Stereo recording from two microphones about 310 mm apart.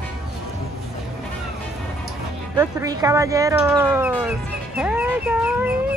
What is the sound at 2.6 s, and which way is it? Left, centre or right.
Speech, centre.